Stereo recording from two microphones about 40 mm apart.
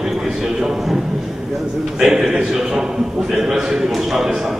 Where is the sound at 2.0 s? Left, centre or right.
Centre.